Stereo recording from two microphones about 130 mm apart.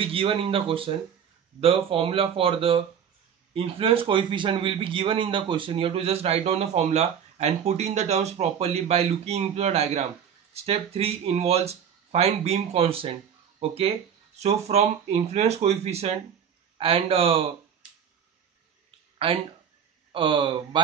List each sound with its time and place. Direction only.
0.0 s a man's voice: 45° right (ahead or behind)
19.1 s a sound: 45° right (ahead or behind)
20.1 s speech: 40° right (ahead or behind)